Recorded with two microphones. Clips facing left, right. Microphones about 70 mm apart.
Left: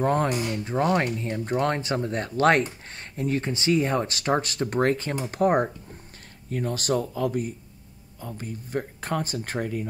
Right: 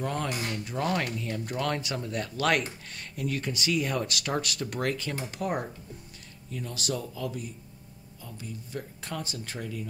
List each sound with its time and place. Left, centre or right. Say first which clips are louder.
0.0 s speech: left 8 dB; left